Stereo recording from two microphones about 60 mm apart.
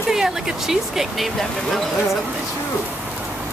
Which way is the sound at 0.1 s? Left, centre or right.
Centre.